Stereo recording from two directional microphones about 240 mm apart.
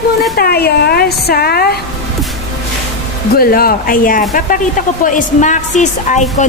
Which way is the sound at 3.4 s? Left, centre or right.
Left.